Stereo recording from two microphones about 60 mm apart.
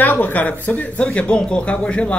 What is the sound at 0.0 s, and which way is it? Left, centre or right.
Speech, left.